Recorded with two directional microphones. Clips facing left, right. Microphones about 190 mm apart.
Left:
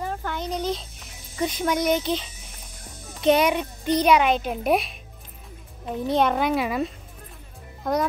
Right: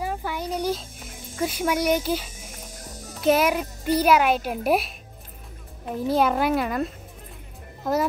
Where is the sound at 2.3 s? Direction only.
40° right (ahead or behind).